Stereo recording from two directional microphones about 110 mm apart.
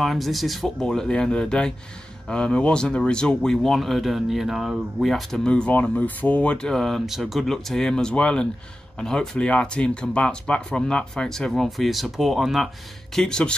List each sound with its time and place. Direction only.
0.0 s speech: centre (ahead or behind)